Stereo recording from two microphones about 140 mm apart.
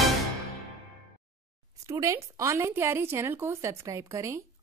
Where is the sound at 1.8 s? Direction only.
20° right (ahead or behind).